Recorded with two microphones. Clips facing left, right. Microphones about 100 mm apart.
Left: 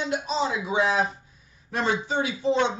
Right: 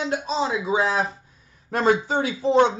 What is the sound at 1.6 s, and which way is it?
A man's voice, 45° right (ahead or behind).